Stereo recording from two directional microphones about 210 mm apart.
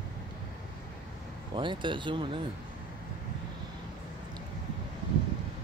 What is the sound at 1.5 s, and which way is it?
Speech, 25° right (ahead or behind).